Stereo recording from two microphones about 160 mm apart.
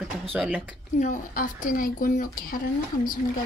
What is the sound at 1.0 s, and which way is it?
Speech, 55° left (ahead or behind).